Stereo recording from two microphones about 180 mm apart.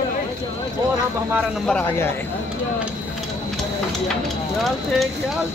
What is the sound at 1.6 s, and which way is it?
Speech, 10° left (ahead or behind).